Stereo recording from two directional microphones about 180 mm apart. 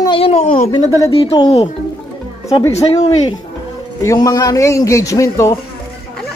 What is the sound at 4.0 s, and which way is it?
A man's voice, 20° left (ahead or behind).